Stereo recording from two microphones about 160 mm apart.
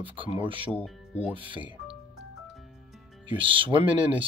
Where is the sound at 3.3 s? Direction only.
30° right (ahead or behind).